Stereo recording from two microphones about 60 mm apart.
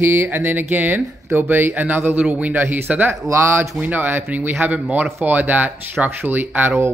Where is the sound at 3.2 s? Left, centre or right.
Right.